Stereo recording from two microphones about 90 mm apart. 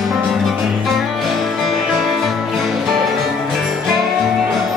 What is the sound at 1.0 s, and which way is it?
Music, centre (ahead or behind).